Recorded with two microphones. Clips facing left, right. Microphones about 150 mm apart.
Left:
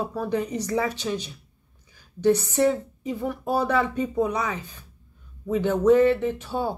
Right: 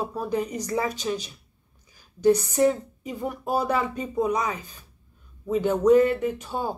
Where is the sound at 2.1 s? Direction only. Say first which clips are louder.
Right 1 dB; 15° right (ahead or behind).